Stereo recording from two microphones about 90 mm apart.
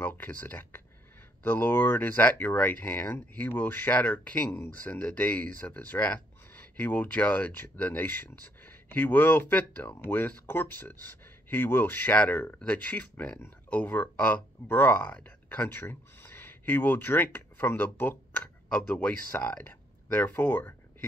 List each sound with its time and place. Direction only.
0.0 s speech: 20° left (ahead or behind)